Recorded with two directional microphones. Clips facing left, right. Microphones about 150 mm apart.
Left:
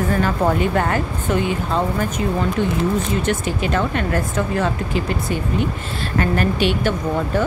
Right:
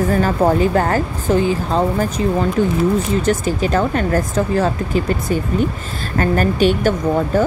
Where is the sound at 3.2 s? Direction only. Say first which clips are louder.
Right 4 dB; 40° right (ahead or behind).